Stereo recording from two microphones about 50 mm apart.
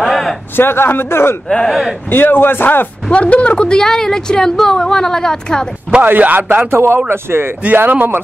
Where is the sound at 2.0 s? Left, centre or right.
Left.